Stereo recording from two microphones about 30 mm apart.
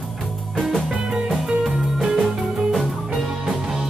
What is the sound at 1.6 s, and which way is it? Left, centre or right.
Music, centre.